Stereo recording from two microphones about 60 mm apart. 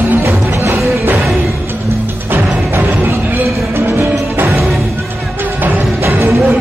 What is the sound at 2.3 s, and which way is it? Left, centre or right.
Music, right.